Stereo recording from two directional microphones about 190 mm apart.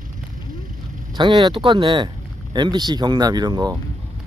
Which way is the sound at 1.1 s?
25° right (ahead or behind).